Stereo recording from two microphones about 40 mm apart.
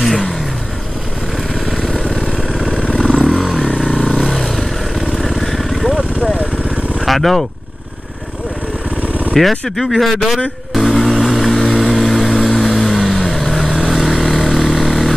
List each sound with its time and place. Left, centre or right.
1.8 s vehicle: centre
2.3 s vehicle: centre
2.8 s vehicle: left
3.3 s vehicle: centre
3.9 s vehicle: centre
7.1 s speech: centre
9.0 s vehicle: right
9.3 s speech: centre
10.7 s vehicle: centre